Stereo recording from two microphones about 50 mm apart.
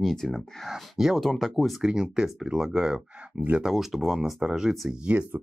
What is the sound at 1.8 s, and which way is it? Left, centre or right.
Speech, centre.